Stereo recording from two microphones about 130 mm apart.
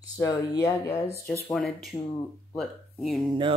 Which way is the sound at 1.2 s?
5° left (ahead or behind).